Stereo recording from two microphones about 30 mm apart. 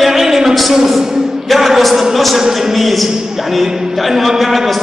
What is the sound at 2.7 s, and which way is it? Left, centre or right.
A man's voice, centre.